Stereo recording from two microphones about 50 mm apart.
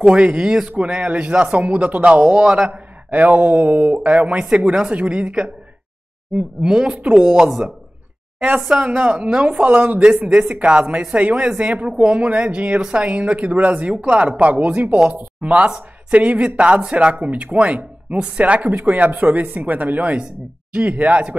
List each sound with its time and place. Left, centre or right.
0.1 s speech: right
3.1 s speech: right
6.6 s a woman's voice: centre